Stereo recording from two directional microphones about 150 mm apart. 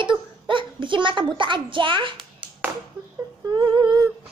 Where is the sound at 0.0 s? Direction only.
35° right (ahead or behind).